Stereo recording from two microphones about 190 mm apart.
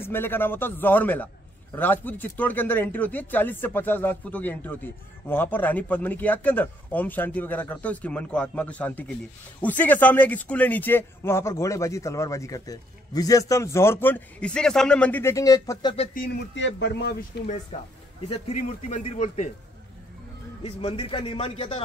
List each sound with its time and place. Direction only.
0.0 s speech: 10° left (ahead or behind)
16.5 s speech: 70° left (ahead or behind)
18.7 s speech: 35° left (ahead or behind)
20.6 s a man's voice: 30° left (ahead or behind)